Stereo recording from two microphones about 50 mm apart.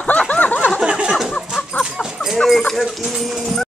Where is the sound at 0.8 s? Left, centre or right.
Centre.